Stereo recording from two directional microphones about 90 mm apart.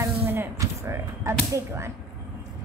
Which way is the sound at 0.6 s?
35° right (ahead or behind).